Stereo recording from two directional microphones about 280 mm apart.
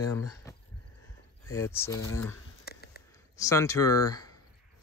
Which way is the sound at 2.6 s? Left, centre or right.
Left.